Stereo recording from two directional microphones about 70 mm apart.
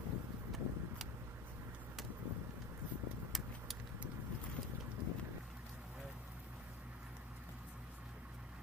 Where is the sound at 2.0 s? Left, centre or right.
Centre.